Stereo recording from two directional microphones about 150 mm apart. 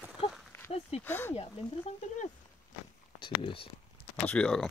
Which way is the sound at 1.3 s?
45° left (ahead or behind).